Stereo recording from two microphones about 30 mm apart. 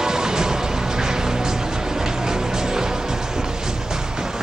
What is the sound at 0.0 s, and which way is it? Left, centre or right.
Music, right.